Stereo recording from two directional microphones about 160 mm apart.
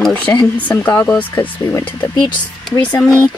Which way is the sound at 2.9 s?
5° left (ahead or behind).